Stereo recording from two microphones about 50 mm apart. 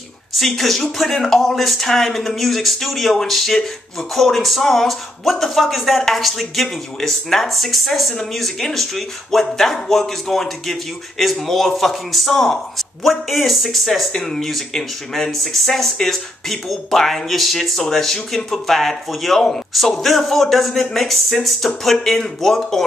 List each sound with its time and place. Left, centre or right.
0.3 s speech: centre